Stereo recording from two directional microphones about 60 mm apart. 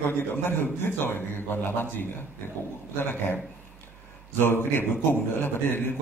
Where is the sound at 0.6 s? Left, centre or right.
Left.